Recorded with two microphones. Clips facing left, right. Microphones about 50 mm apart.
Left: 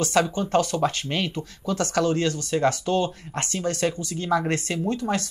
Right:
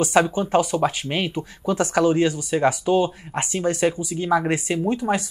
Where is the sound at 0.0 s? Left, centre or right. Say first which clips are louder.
Right 4 dB; centre.